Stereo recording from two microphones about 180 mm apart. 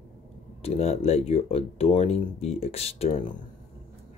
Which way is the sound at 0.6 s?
35° left (ahead or behind).